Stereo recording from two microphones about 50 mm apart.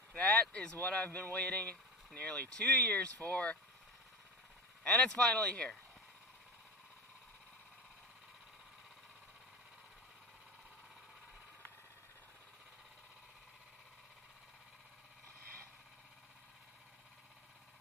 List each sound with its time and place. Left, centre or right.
0.1 s speech: left
4.8 s speech: centre